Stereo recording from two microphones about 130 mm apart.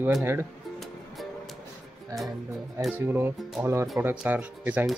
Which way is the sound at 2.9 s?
15° right (ahead or behind).